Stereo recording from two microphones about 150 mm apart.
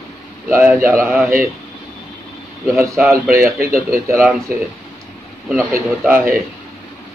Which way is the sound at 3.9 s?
20° right (ahead or behind).